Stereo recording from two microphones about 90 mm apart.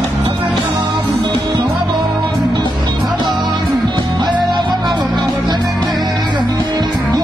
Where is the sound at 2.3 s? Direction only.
55° right (ahead or behind).